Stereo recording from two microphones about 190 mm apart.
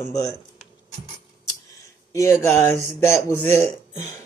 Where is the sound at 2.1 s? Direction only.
15° left (ahead or behind).